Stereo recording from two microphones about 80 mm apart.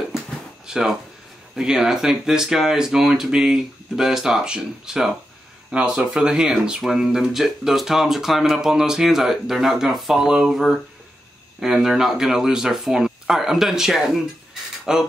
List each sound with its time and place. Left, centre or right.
0.7 s speech: centre